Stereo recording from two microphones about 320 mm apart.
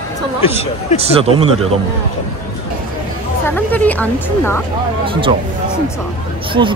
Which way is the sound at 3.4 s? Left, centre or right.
Centre.